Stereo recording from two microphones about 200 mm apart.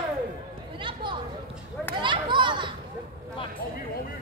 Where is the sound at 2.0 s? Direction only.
25° right (ahead or behind).